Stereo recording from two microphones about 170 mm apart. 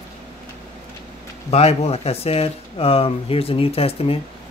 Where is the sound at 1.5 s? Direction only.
40° left (ahead or behind).